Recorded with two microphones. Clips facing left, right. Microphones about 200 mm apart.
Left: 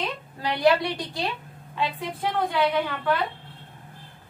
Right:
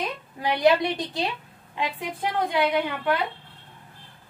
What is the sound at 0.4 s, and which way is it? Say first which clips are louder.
A woman's voice: right 1 dB; 15° right (ahead or behind).